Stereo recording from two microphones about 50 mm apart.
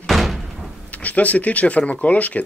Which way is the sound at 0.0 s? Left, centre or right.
Centre.